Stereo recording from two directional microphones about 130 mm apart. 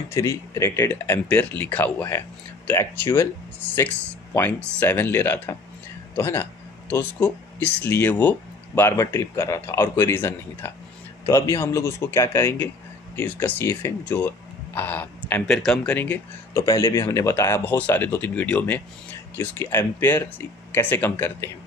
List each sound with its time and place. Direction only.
0.1 s speech: 20° left (ahead or behind)
15.4 s speech: centre (ahead or behind)